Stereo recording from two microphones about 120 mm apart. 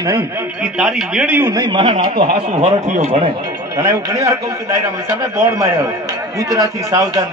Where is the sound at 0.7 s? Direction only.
5° right (ahead or behind).